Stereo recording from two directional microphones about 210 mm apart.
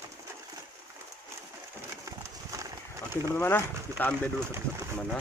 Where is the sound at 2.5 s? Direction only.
15° right (ahead or behind).